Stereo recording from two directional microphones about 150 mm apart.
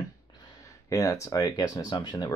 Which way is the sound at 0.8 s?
20° left (ahead or behind).